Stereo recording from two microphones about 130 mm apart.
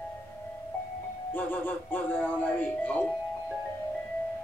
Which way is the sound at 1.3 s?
15° left (ahead or behind).